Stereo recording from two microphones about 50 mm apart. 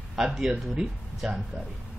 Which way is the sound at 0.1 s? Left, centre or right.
Centre.